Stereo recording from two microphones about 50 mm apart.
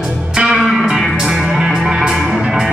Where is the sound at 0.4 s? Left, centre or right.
Centre.